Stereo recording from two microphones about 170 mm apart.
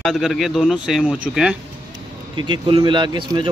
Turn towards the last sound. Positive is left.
turn(degrees=-30)  # may be behind; listen again after turning